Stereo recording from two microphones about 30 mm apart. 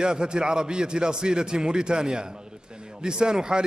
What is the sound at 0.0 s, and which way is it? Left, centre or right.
A man's voice, right.